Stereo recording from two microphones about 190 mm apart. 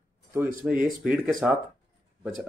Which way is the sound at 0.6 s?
5° right (ahead or behind).